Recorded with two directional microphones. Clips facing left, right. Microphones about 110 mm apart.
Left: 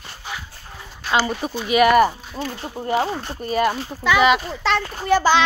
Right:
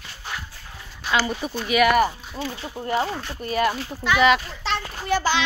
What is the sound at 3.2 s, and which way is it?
Speech, 35° left (ahead or behind).